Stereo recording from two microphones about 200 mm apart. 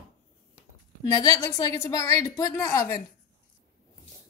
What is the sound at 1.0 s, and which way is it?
A woman's voice, 15° left (ahead or behind).